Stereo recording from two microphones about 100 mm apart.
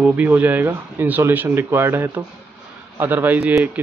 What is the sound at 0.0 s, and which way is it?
Speech, 15° right (ahead or behind).